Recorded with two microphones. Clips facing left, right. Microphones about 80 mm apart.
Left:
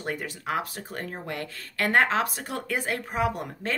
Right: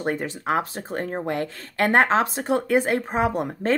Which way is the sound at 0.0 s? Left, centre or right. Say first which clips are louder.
Right 6 dB; right.